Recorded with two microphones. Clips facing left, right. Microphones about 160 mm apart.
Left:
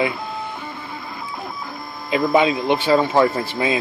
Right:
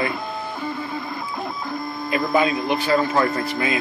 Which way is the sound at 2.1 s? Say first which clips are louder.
Left 3 dB; 20° left (ahead or behind).